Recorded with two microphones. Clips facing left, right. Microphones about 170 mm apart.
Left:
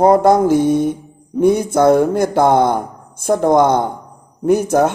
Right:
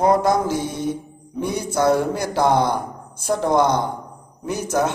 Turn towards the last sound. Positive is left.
turn(degrees=55)  # may be behind; listen again after turning